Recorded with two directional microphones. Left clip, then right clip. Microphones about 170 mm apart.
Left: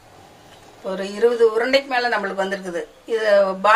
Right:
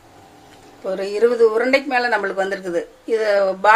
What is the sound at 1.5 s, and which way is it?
Speech, 55° right (ahead or behind).